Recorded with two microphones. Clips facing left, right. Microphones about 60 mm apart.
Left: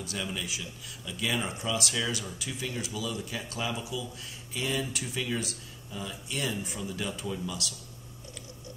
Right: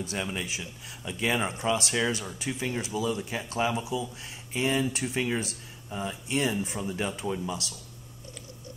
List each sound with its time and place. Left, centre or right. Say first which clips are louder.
0.0 s speech: right 3 dB; right